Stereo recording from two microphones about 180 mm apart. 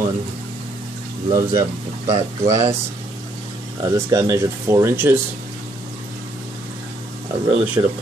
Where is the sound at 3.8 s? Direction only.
15° right (ahead or behind).